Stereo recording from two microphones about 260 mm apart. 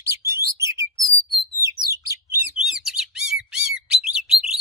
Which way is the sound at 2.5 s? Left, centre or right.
Centre.